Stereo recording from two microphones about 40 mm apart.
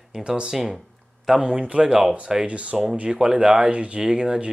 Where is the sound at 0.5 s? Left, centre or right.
Centre.